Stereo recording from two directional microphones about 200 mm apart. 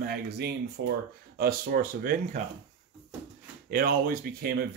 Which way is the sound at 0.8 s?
65° right (ahead or behind).